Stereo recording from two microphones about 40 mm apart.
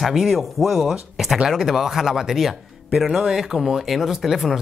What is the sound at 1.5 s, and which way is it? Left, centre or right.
Speech, centre.